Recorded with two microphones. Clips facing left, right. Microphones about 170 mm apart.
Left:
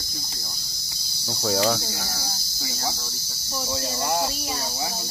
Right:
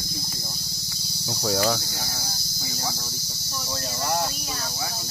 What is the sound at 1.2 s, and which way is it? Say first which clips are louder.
Speech: left 1 dB; centre (ahead or behind).